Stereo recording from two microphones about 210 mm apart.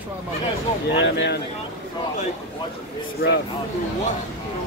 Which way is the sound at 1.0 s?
60° left (ahead or behind).